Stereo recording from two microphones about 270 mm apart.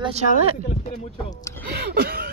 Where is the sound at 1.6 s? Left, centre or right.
Right.